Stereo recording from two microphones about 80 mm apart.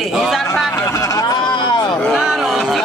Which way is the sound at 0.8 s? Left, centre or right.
Left.